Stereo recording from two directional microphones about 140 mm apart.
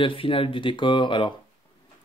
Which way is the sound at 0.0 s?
40° left (ahead or behind).